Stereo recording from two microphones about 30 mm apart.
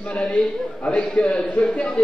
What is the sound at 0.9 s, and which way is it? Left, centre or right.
A man's voice, left.